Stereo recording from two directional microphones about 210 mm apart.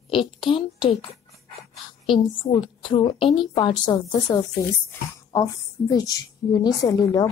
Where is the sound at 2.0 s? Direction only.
20° left (ahead or behind).